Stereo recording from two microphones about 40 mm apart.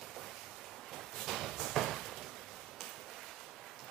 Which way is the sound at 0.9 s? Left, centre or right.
Centre.